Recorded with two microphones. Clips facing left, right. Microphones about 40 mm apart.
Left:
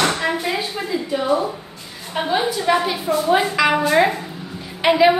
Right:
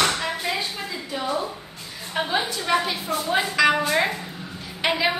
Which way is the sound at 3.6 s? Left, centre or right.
Centre.